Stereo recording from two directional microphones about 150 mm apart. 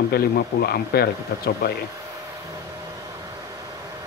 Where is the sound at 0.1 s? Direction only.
90° left.